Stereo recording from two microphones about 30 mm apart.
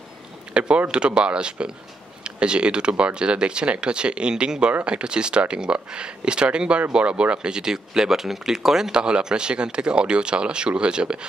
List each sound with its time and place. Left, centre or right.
0.6 s speech: right
7.6 s speech: centre
8.9 s speech: right